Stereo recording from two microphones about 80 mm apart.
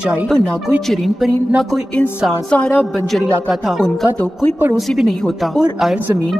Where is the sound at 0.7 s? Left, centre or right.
Centre.